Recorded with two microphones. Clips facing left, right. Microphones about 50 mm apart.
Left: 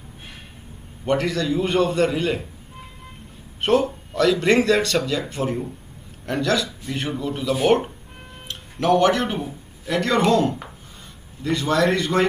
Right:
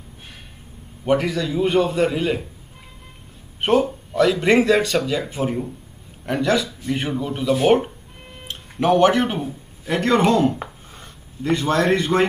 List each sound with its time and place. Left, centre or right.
1.0 s speech: centre
3.8 s a man's voice: centre
11.4 s a man's voice: right